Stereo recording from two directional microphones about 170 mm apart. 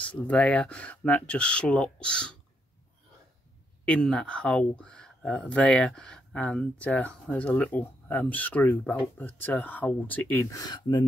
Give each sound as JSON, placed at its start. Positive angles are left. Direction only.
{"t": 0.0, "sound": "speech", "side_deg": 5}
{"t": 3.8, "sound": "speech", "side_deg": 5}